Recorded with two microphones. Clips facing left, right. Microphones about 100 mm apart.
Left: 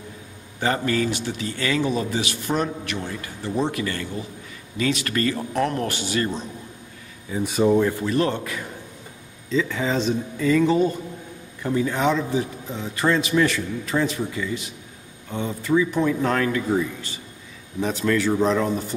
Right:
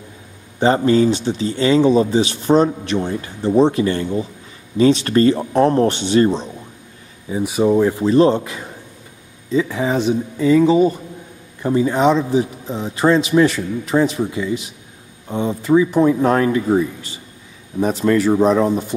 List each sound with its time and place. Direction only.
0.6 s a man's voice: 25° right (ahead or behind)
7.4 s speech: 10° right (ahead or behind)
7.8 s a man's voice: 25° right (ahead or behind)
18.1 s a man's voice: 25° right (ahead or behind)